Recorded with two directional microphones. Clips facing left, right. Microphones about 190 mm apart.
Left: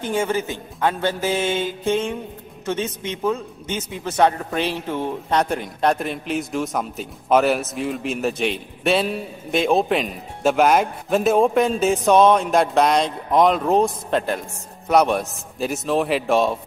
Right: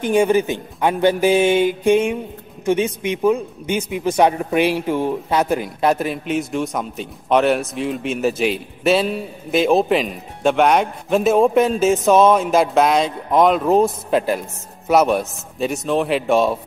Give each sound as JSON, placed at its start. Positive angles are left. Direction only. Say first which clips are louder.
{"t": 0.0, "sound": "a man's voice", "louder": "right 7 dB", "side_deg": -15}